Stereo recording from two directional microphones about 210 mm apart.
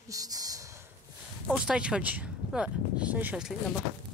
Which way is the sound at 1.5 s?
5° right (ahead or behind).